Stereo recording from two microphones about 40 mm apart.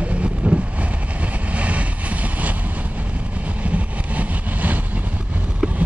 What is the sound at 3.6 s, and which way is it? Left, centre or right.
Vehicle, right.